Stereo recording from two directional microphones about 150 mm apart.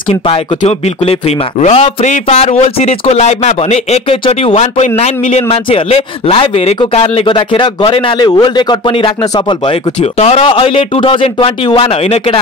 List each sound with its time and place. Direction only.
0.1 s speech: 40° left (ahead or behind)